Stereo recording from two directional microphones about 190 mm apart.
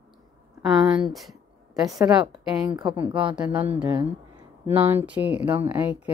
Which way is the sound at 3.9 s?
25° right (ahead or behind).